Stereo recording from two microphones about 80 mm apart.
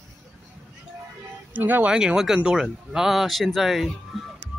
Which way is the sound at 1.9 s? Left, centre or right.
Centre.